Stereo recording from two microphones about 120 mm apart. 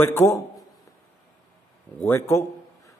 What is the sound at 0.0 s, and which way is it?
Speech, 20° left (ahead or behind).